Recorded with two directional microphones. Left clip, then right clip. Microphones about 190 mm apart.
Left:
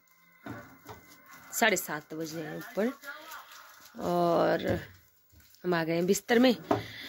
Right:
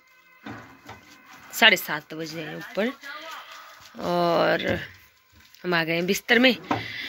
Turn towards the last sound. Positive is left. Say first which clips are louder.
# right 3 dB
turn(degrees=15)  # may be behind; listen again after turning